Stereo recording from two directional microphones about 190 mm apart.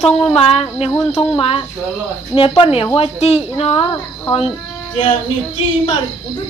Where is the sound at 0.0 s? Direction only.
30° left (ahead or behind).